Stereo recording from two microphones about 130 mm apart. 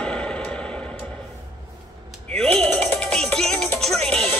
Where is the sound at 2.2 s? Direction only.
5° left (ahead or behind).